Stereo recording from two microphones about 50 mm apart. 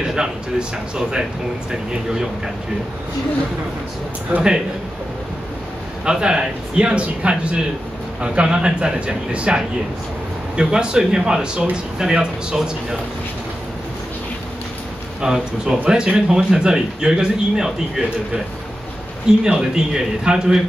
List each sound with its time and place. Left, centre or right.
0.0 s a man's voice: centre
1.9 s a man's voice: centre
4.3 s speech: right
6.0 s a man's voice: centre
15.2 s a man's voice: centre
19.4 s a man's voice: centre